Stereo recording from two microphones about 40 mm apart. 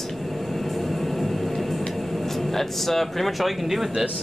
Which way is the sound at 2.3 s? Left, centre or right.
Centre.